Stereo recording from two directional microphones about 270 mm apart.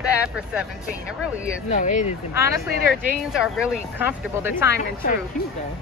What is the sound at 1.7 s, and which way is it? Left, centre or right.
Speech, left.